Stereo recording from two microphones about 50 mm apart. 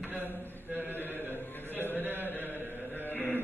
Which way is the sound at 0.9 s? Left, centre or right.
Left.